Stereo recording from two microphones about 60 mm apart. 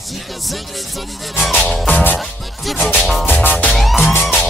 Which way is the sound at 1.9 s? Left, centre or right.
Left.